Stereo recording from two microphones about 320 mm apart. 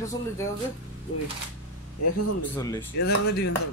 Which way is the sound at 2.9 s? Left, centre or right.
Left.